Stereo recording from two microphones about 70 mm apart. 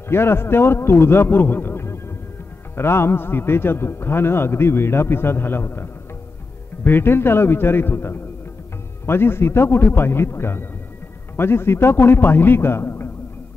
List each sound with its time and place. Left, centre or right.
0.1 s a man's voice: left